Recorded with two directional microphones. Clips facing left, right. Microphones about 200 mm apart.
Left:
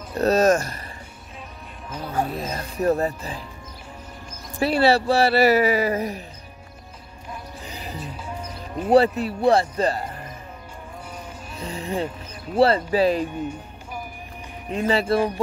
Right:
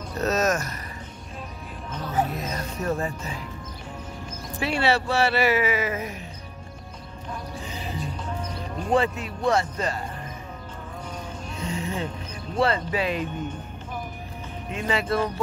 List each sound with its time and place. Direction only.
0.2 s speech: 30° left (ahead or behind)
2.3 s speech: 30° left (ahead or behind)
4.6 s speech: 35° left (ahead or behind)
7.6 s music: 40° left (ahead or behind)
8.0 s music: 5° left (ahead or behind)
8.9 s speech: 35° left (ahead or behind)
11.6 s speech: 35° left (ahead or behind)
14.7 s speech: 35° left (ahead or behind)